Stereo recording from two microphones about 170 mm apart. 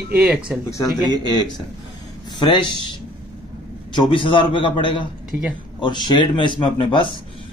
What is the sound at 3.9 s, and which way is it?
A man's voice, 30° left (ahead or behind).